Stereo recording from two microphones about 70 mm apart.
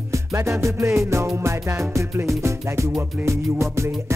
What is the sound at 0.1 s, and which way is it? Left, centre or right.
Music, right.